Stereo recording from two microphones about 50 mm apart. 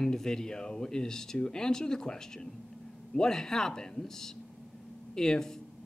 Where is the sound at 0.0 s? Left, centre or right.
Centre.